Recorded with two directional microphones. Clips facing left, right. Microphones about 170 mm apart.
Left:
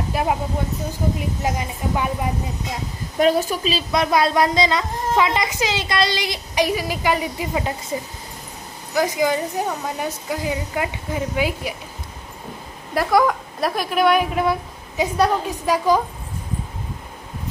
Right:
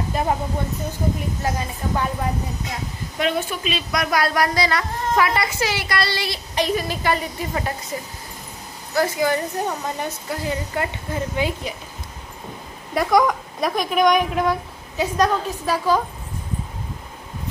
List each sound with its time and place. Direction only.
0.1 s speech: 10° left (ahead or behind)
1.4 s a woman's voice: 15° left (ahead or behind)
3.2 s a woman's voice: 40° left (ahead or behind); by 11.7 s 10° left (ahead or behind)
12.9 s a woman's voice: 5° left (ahead or behind)